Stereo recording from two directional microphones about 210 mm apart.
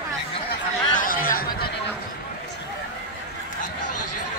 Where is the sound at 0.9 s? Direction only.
40° left (ahead or behind).